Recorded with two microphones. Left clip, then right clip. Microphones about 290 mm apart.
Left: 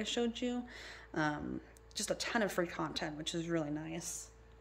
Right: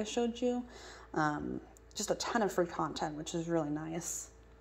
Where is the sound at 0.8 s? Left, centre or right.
Centre.